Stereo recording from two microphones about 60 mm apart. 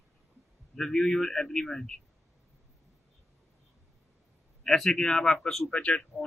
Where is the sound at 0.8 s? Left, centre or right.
Centre.